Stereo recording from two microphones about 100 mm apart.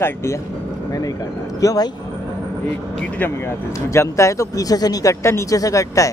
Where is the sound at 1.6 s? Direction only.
35° left (ahead or behind).